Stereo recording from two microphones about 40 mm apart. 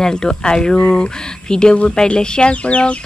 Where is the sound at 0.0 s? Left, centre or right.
Centre.